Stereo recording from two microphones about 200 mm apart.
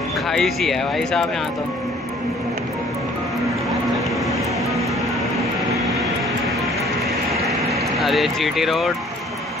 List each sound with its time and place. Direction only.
0.3 s speech: centre (ahead or behind)
8.0 s speech: centre (ahead or behind)